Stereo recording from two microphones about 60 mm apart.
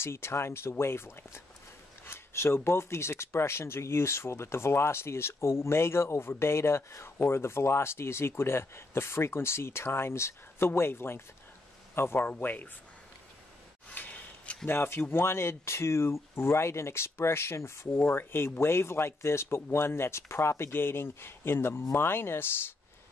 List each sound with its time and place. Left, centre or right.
0.0 s speech: left
12.3 s speech: left
13.8 s a sound: left
14.7 s speech: left